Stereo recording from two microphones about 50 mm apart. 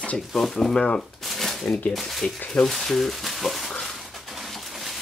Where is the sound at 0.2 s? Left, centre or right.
Centre.